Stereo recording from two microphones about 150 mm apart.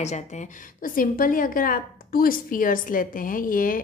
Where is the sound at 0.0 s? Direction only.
50° left (ahead or behind).